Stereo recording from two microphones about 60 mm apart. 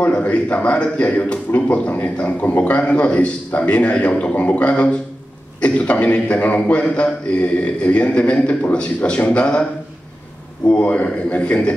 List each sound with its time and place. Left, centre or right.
0.0 s a man's voice: left
10.7 s a man's voice: left